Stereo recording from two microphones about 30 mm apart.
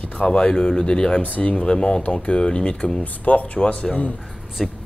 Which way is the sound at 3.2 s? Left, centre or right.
Left.